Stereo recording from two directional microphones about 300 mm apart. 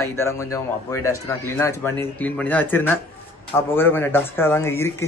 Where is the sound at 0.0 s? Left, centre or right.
Centre.